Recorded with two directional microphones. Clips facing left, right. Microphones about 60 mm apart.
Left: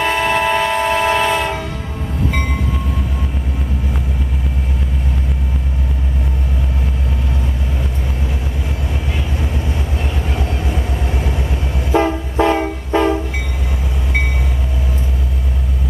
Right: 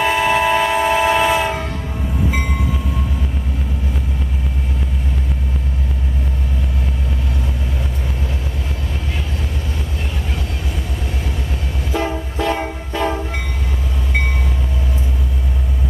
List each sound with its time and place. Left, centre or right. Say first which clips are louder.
0.0 s train: even; centre
11.9 s vehicle: left 6 dB; left